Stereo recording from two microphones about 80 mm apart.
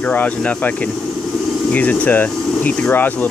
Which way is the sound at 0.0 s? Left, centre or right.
Centre.